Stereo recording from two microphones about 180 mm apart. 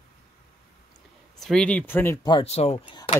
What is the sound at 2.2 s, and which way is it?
Speech, 30° left (ahead or behind).